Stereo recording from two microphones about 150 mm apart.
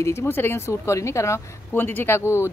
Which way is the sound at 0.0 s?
15° left (ahead or behind).